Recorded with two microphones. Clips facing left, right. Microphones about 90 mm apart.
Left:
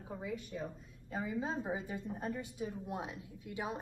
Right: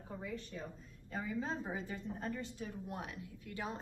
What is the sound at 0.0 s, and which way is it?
A woman's voice, 10° left (ahead or behind).